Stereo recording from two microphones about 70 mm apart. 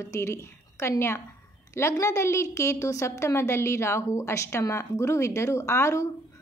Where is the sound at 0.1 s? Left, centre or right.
Left.